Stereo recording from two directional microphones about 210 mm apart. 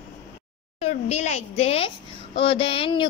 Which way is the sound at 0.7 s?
30° left (ahead or behind).